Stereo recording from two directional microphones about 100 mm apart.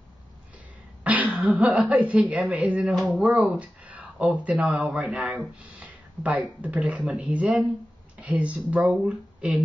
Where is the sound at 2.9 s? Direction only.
Centre (ahead or behind).